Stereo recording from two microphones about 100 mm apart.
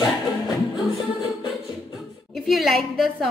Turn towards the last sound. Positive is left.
turn(degrees=0)  # may be behind; listen again after turning